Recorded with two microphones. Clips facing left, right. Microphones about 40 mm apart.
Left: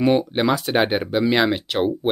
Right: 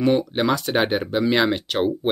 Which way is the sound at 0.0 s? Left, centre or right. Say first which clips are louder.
Left 1 dB; centre.